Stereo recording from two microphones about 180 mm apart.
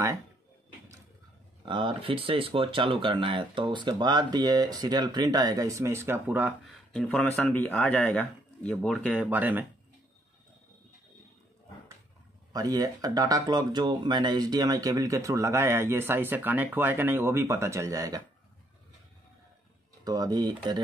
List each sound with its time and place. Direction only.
1.7 s speech: 25° right (ahead or behind); by 6.8 s 10° right (ahead or behind)
6.9 s speech: 5° left (ahead or behind)
9.3 s speech: 10° right (ahead or behind)
12.5 s speech: 20° right (ahead or behind)
20.1 s speech: 20° right (ahead or behind)